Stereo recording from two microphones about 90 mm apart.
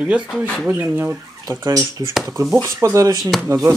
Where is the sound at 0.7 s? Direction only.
25° right (ahead or behind).